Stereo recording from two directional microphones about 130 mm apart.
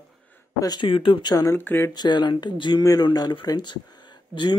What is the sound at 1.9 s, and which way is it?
Speech, 35° left (ahead or behind).